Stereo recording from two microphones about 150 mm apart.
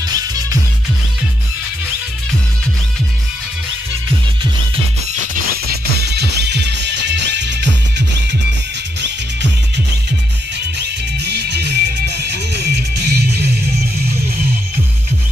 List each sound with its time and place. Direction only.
5.1 s music: 70° right (ahead or behind); by 6.5 s 90° right
10.8 s music: 90° right